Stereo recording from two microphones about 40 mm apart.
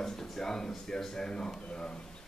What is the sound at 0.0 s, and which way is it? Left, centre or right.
Speech, centre.